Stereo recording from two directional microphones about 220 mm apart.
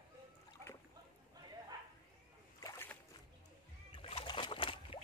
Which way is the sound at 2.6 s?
10° left (ahead or behind).